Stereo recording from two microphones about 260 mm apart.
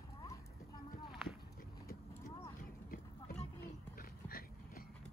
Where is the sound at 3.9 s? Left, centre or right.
Left.